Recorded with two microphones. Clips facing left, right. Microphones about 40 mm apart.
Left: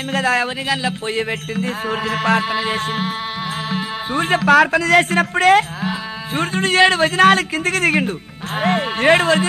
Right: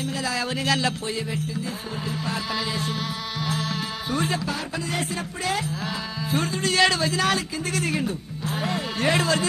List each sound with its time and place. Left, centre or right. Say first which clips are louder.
0.1 s speech: left 13 dB; left
1.6 s music: left 10 dB; left
2.5 s music: left 7 dB; left
4.5 s speech: left 17 dB; left
5.9 s music: left 4 dB; left
6.8 s speech: left 9 dB; left